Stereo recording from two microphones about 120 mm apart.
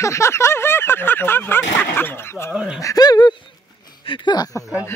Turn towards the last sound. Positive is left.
turn(degrees=30)  # may be behind; listen again after turning